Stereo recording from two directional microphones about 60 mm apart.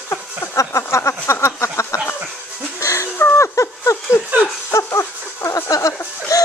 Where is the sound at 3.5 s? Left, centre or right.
Left.